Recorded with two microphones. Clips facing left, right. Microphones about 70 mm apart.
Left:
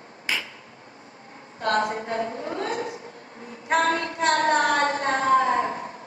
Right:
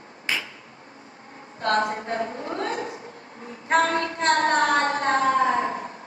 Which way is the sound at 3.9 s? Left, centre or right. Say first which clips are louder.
Right 1 dB; right.